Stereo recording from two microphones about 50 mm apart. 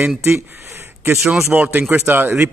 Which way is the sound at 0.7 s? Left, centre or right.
Right.